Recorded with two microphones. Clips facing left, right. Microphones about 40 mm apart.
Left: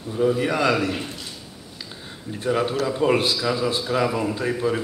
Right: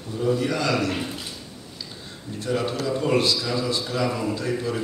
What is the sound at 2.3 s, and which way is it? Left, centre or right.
Speech, centre.